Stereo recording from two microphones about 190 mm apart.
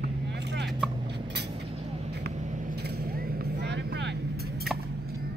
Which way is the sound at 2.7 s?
55° right (ahead or behind).